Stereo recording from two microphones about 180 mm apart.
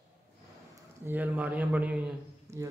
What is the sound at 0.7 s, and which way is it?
A man's voice, 10° right (ahead or behind).